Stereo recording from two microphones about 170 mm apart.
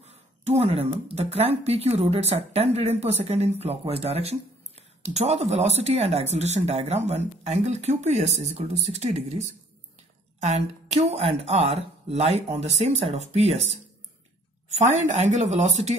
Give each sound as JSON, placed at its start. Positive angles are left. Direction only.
{"t": 0.0, "sound": "a woman's voice", "side_deg": -40}
{"t": 10.4, "sound": "a woman's voice", "side_deg": -40}